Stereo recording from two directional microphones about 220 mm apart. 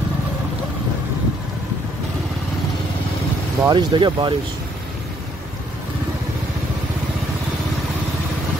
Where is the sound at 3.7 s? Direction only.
20° right (ahead or behind).